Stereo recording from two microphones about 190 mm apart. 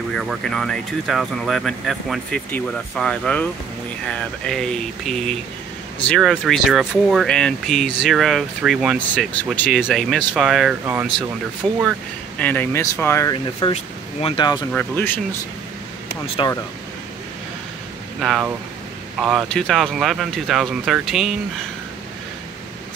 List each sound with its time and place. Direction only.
0.1 s speech: centre (ahead or behind)
12.4 s speech: 10° left (ahead or behind)
14.7 s speech: 10° left (ahead or behind)
16.4 s speech: 25° left (ahead or behind)
18.2 s speech: centre (ahead or behind)